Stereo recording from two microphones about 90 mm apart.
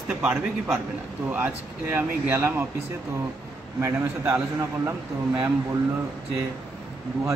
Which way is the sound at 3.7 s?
35° right (ahead or behind).